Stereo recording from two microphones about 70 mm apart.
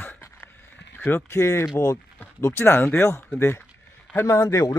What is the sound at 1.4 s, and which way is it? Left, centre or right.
Speech, left.